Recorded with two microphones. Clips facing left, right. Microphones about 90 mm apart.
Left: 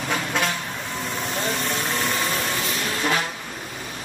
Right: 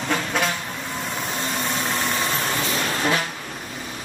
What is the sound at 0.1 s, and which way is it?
Vehicle, centre (ahead or behind).